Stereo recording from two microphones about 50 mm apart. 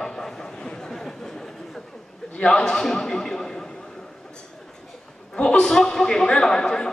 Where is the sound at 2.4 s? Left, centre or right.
Centre.